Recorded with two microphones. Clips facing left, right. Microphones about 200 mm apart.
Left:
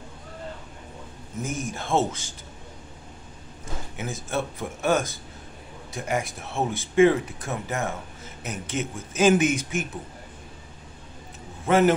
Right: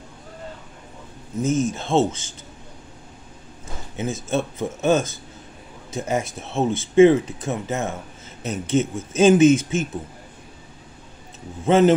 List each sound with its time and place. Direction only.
1.4 s speech: 20° right (ahead or behind)
3.9 s speech: 25° right (ahead or behind)
11.6 s speech: 25° right (ahead or behind)